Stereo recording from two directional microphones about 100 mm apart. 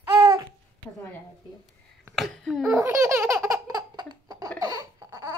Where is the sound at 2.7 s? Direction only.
30° right (ahead or behind).